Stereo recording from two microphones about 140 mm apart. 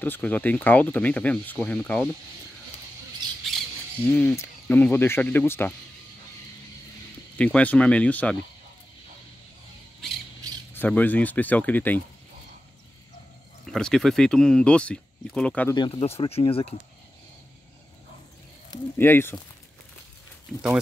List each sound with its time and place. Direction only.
0.0 s speech: 10° left (ahead or behind)
4.0 s speech: 15° left (ahead or behind)
7.3 s speech: 10° left (ahead or behind)
10.0 s squawk: 5° left (ahead or behind)
10.7 s speech: 10° left (ahead or behind)
13.7 s speech: 5° left (ahead or behind)
15.7 s speech: 35° left (ahead or behind)
18.9 s speech: 15° left (ahead or behind)